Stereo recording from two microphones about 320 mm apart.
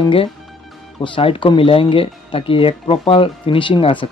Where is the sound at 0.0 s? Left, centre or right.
Centre.